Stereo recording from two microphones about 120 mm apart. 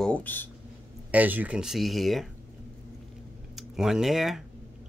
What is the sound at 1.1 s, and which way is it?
Speech, 15° right (ahead or behind).